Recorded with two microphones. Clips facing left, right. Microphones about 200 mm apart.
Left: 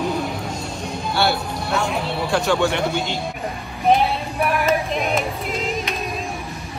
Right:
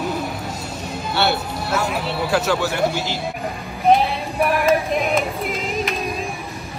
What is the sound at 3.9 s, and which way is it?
Child singing, centre (ahead or behind).